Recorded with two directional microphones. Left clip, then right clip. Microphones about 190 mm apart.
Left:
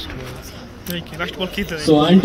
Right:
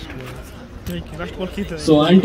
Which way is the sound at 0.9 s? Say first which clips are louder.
Left 4 dB; 30° right (ahead or behind).